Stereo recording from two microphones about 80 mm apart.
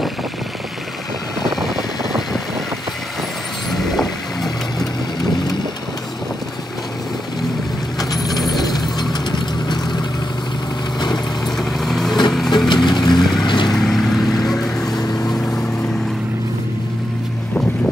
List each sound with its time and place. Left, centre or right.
3.7 s vehicle: centre
8.0 s mechanisms: left
8.4 s a sound: left
9.1 s vehicle: left
11.4 s vehicle: centre
12.4 s vehicle: left
13.2 s vehicle: centre